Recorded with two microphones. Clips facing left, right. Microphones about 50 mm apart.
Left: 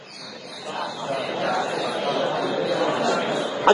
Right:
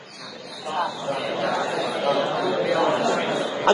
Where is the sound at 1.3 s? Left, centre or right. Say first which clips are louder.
Even; left.